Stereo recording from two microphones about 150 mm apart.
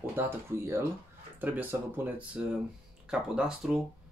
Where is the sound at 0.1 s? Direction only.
15° right (ahead or behind).